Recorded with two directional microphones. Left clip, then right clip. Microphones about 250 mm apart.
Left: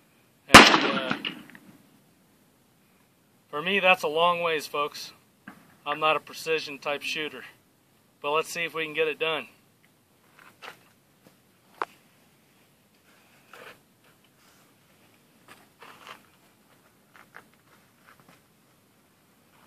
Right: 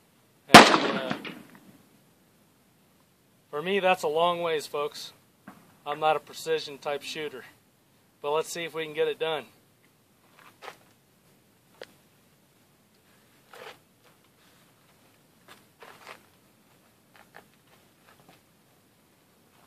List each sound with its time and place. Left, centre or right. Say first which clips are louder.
0.7 s firecracker: left 2 dB; centre
3.4 s a man's voice: left 3 dB; centre
15.4 s a sound: left 1 dB; centre
17.1 s insect: left 3 dB; centre